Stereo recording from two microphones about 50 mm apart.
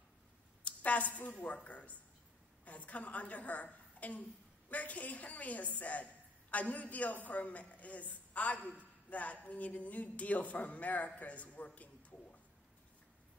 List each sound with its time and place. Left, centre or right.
0.7 s a woman's voice: left